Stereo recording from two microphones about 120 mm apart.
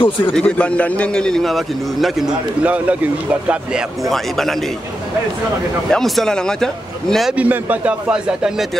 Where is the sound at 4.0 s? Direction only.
Centre (ahead or behind).